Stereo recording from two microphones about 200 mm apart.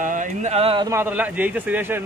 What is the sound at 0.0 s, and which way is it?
Speech, 40° right (ahead or behind).